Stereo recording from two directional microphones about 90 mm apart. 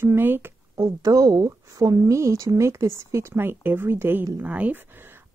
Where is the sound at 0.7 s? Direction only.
45° right (ahead or behind).